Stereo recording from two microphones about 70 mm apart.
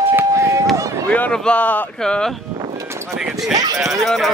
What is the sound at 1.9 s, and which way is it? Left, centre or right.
Speech, centre.